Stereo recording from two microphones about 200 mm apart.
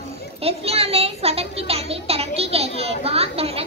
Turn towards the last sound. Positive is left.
turn(degrees=-30)  # may be behind; listen again after turning